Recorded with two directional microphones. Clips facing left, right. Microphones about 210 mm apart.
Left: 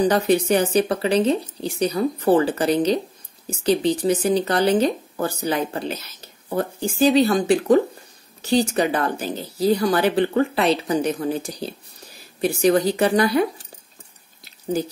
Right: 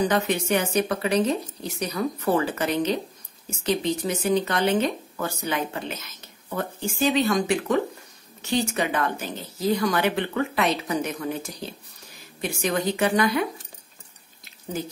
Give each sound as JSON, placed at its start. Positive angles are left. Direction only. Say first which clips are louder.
{"t": 0.1, "sound": "speech", "louder": "left 5 dB", "side_deg": 35}